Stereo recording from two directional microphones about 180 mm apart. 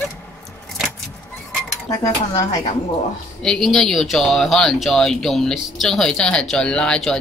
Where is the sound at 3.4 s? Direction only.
5° left (ahead or behind).